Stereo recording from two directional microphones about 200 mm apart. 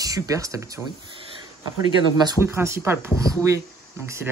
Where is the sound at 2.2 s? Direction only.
15° right (ahead or behind).